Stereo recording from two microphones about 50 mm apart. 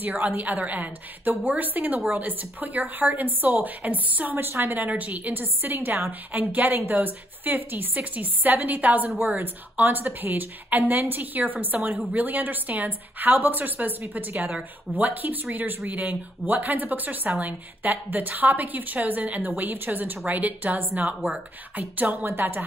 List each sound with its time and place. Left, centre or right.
0.0 s speech: right
4.5 s a woman's voice: right
4.7 s a woman's voice: right